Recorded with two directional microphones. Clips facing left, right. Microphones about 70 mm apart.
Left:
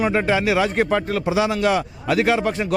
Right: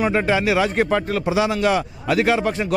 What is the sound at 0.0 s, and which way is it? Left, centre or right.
A man's voice, right.